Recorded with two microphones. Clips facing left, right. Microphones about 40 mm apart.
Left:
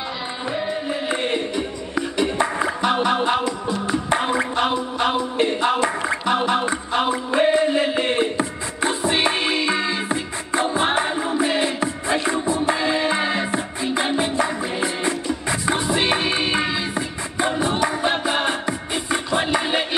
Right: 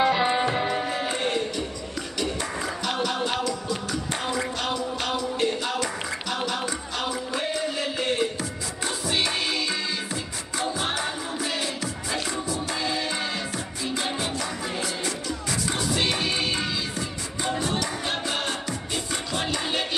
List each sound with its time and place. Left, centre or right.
0.0 s music: right
1.0 s music: left